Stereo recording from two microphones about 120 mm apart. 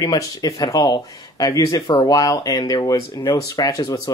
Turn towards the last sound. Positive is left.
turn(degrees=30)  # may be behind; listen again after turning